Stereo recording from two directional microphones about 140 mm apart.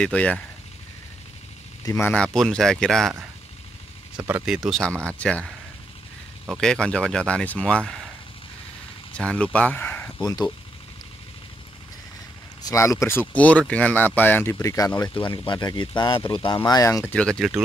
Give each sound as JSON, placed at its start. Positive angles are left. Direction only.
{"t": 0.0, "sound": "speech", "side_deg": 10}
{"t": 1.9, "sound": "speech", "side_deg": 15}
{"t": 4.2, "sound": "speech", "side_deg": -15}
{"t": 4.6, "sound": "speech", "side_deg": 0}
{"t": 9.1, "sound": "speech", "side_deg": 10}
{"t": 10.2, "sound": "speech", "side_deg": 30}
{"t": 12.6, "sound": "speech", "side_deg": 20}
{"t": 17.1, "sound": "speech", "side_deg": 5}